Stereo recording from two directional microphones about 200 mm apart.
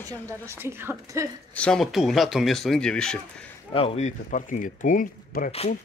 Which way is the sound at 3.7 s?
30° left (ahead or behind).